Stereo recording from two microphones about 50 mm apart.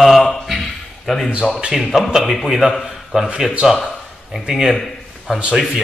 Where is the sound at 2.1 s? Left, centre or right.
Centre.